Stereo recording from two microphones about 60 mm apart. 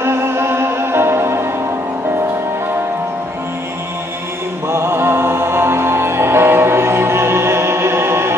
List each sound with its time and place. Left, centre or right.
0.0 s music: right
4.6 s music: right